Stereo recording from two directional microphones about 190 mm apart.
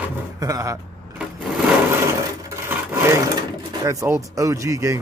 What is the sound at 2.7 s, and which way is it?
Wood, 15° right (ahead or behind).